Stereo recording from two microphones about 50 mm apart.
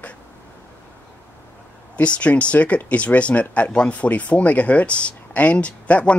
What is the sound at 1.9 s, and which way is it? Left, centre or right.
Speech, left.